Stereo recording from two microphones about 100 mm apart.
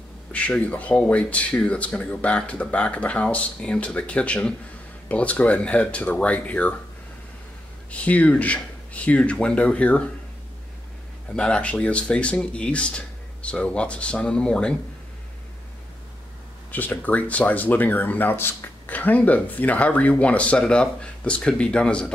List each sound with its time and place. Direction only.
0.3 s speech: 15° left (ahead or behind)
7.9 s speech: 15° left (ahead or behind)
11.3 s speech: 10° left (ahead or behind)
16.7 s speech: 15° left (ahead or behind)